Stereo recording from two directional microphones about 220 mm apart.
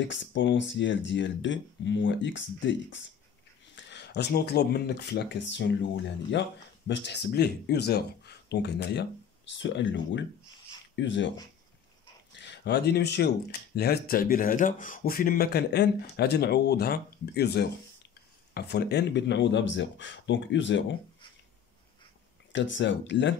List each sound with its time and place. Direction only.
0.1 s speech: 55° left (ahead or behind)
12.4 s speech: 50° left (ahead or behind)
22.5 s speech: 55° left (ahead or behind)